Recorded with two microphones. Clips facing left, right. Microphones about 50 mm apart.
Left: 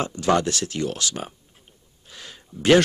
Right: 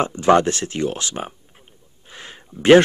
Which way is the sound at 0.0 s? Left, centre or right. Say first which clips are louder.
Right 6 dB; right.